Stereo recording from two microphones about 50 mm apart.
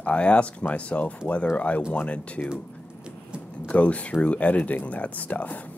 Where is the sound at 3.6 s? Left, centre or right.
Left.